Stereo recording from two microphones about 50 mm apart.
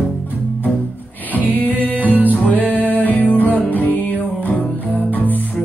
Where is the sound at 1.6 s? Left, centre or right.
Right.